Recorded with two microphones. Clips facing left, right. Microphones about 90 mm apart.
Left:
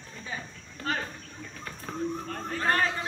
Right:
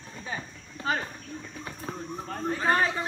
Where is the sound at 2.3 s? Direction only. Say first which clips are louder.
Right 5 dB; 15° right (ahead or behind).